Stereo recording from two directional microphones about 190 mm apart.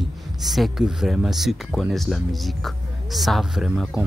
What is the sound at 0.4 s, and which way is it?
Speech, centre (ahead or behind).